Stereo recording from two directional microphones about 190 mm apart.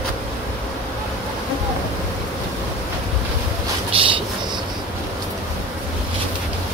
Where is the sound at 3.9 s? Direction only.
30° right (ahead or behind).